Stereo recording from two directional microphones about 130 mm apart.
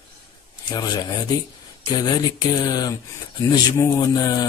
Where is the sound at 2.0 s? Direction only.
30° left (ahead or behind).